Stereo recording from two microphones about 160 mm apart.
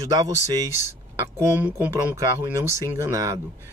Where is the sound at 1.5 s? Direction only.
10° right (ahead or behind).